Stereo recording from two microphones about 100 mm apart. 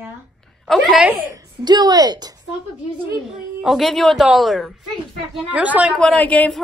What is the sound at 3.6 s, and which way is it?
A woman's voice, centre (ahead or behind).